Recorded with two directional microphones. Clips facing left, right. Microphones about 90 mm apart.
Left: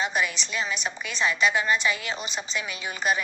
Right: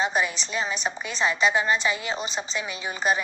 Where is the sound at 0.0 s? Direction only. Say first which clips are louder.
Right 2 dB; 30° right (ahead or behind).